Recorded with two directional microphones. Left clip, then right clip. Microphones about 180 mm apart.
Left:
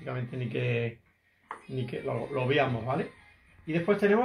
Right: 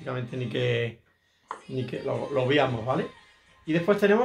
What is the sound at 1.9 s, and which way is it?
Speech, 25° right (ahead or behind).